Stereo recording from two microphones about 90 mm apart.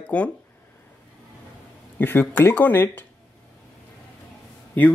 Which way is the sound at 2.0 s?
20° left (ahead or behind).